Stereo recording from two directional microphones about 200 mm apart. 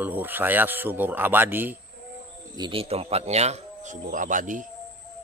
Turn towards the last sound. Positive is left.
turn(degrees=-40)  # may be behind; listen again after turning